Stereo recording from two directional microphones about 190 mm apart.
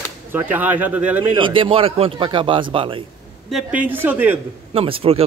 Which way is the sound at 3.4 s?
5° right (ahead or behind).